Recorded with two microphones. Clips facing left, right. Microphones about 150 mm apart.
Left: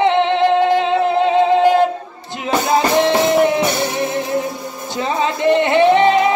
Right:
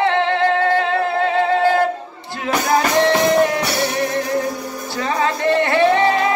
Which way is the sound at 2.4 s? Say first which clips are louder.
Left 2 dB; 20° left (ahead or behind).